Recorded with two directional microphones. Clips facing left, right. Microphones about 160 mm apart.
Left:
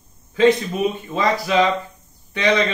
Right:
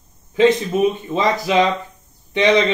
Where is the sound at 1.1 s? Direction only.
20° right (ahead or behind).